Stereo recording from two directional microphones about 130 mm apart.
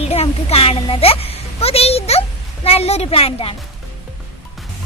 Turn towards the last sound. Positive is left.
turn(degrees=45)  # may be behind; listen again after turning